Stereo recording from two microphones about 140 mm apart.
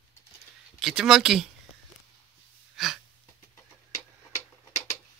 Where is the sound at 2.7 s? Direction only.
Centre (ahead or behind).